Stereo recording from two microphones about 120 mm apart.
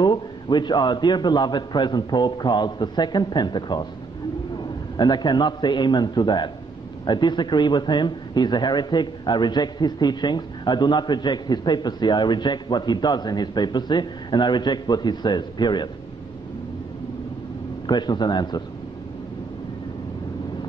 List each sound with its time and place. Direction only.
0.0 s a man's voice: 40° left (ahead or behind)
4.9 s a man's voice: 35° left (ahead or behind)
17.8 s a man's voice: 35° left (ahead or behind)